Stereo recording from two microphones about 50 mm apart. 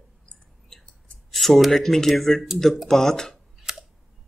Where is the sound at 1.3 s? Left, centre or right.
Centre.